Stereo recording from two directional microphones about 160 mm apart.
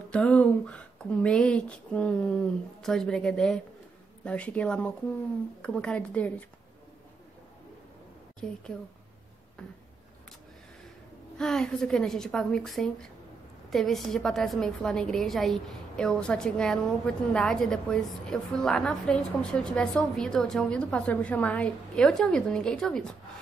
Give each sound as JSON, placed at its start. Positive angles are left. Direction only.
{"t": 0.1, "sound": "speech", "side_deg": 10}
{"t": 8.4, "sound": "a woman's voice", "side_deg": 5}
{"t": 11.3, "sound": "a woman's voice", "side_deg": 5}